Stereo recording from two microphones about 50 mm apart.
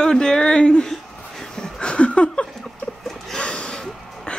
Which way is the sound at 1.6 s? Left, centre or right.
Centre.